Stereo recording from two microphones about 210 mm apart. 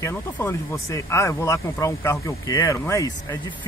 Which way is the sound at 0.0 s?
10° left (ahead or behind).